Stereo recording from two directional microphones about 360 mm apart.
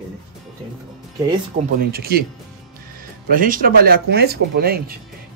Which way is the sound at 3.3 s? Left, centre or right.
Right.